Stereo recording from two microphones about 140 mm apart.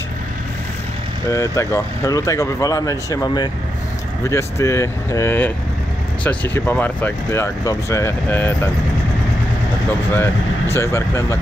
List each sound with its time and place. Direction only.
1.3 s speech: 20° left (ahead or behind)
10.1 s speech: 15° left (ahead or behind)